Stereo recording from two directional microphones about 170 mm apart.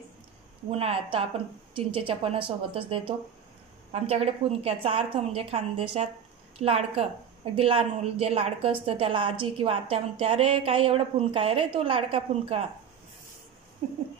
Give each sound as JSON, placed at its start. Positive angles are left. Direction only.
{"t": 0.7, "sound": "a woman's voice", "side_deg": -35}